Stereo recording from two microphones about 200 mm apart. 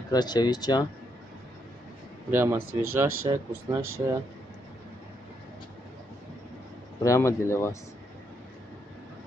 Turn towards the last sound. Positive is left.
turn(degrees=15)  # may be behind; listen again after turning